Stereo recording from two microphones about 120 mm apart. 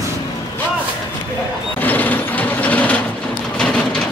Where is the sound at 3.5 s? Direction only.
10° left (ahead or behind).